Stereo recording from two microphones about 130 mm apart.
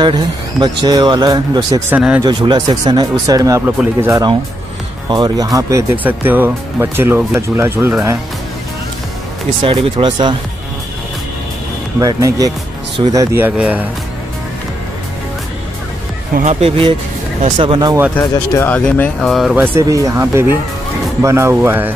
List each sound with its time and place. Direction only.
0.6 s speech: 35° right (ahead or behind)
1.9 s speech: 10° right (ahead or behind)
2.2 s speech: 35° right (ahead or behind); by 4.2 s 15° right (ahead or behind)
5.1 s speech: 30° right (ahead or behind)
9.6 s speech: 45° right (ahead or behind)
12.0 s speech: 25° right (ahead or behind)
13.6 s speech: 10° right (ahead or behind)
16.6 s speech: 45° right (ahead or behind)
18.2 s speech: 30° left (ahead or behind)
18.7 s speech: 10° left (ahead or behind)
19.5 s speech: 20° right (ahead or behind)